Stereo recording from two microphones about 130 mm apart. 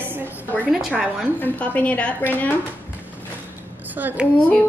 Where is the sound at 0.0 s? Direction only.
15° right (ahead or behind).